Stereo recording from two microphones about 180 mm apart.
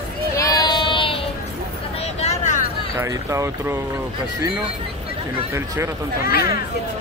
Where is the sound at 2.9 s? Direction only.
15° right (ahead or behind).